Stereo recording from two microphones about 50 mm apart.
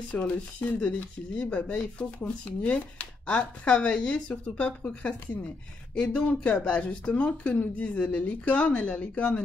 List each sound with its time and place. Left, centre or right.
0.1 s speech: left